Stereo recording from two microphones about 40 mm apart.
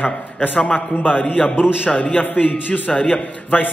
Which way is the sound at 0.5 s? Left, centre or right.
Left.